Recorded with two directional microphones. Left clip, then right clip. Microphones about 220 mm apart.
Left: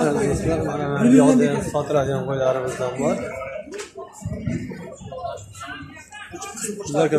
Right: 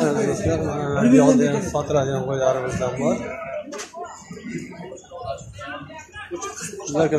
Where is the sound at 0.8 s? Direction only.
5° left (ahead or behind).